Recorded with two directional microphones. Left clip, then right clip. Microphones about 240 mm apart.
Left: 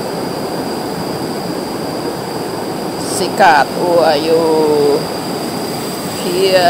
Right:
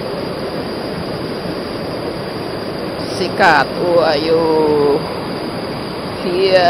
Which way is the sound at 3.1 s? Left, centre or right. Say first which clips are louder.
Left 2 dB; centre.